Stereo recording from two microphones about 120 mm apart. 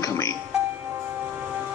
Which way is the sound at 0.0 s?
25° left (ahead or behind).